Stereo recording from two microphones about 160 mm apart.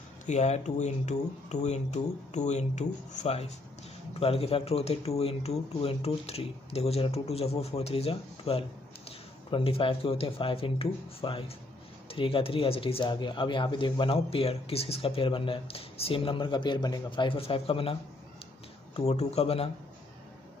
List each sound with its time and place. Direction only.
0.3 s speech: 45° left (ahead or behind)
18.9 s speech: 40° left (ahead or behind)